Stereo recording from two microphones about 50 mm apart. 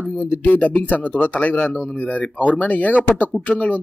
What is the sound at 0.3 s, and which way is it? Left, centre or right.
Speech, left.